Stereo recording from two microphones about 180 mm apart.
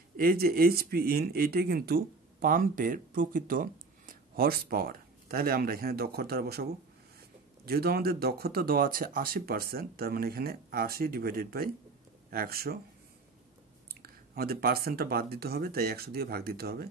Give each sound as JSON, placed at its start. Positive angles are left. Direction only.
{"t": 0.2, "sound": "speech", "side_deg": -55}
{"t": 14.0, "sound": "speech", "side_deg": -55}